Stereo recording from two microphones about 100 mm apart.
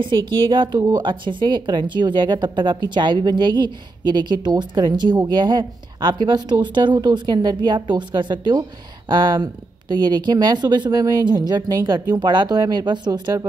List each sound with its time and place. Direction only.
0.0 s a woman's voice: 55° right (ahead or behind)